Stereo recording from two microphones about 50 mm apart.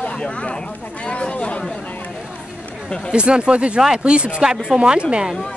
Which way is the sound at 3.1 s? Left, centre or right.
Centre.